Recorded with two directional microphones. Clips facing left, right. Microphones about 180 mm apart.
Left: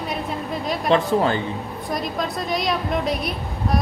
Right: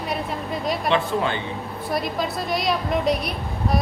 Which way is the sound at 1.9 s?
5° right (ahead or behind).